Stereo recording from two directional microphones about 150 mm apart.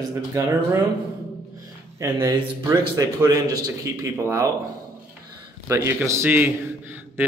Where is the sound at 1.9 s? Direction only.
20° right (ahead or behind).